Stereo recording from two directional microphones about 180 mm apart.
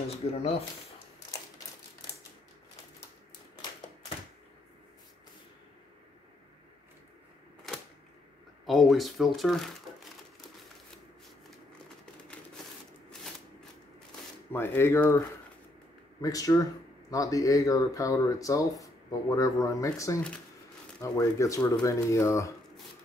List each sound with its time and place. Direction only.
0.3 s speech: 35° left (ahead or behind)
8.6 s speech: centre (ahead or behind)
14.5 s speech: 10° left (ahead or behind)